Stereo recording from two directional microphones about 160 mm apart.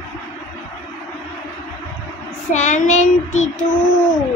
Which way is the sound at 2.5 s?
50° left (ahead or behind).